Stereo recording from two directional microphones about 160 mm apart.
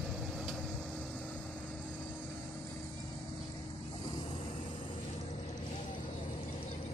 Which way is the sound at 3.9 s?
30° left (ahead or behind).